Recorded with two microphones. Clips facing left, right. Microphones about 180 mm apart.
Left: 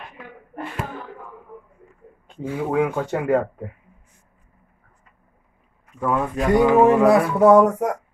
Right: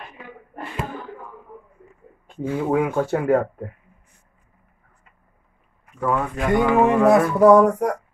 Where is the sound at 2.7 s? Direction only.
5° right (ahead or behind).